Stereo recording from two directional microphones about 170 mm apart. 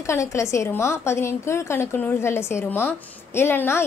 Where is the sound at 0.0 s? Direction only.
15° left (ahead or behind).